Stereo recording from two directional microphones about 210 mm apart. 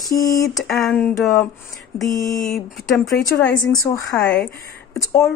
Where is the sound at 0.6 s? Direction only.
Centre (ahead or behind).